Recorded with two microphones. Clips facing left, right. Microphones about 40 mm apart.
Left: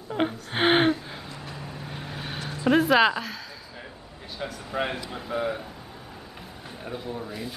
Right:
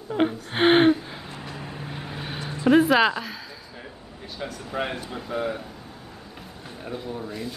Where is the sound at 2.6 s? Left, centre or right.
Centre.